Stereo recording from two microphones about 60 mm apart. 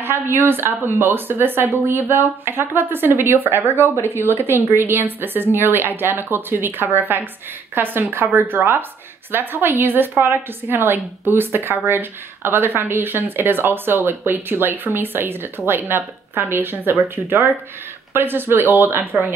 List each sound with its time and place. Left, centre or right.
0.0 s a woman's voice: right